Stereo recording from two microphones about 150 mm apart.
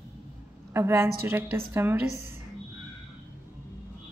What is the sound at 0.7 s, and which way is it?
A woman's voice, 15° right (ahead or behind).